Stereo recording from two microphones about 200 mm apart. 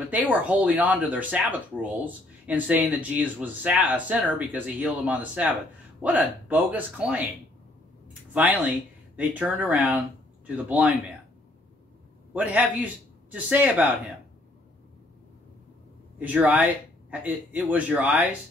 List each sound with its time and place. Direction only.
0.1 s speech: 10° right (ahead or behind)
8.3 s speech: 10° right (ahead or behind)
12.4 s speech: 5° right (ahead or behind)
16.2 s speech: 10° right (ahead or behind)